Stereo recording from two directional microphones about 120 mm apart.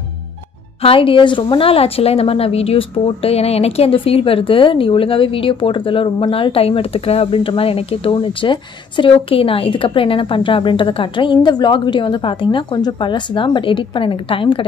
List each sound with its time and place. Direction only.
0.8 s a woman's voice: 50° left (ahead or behind)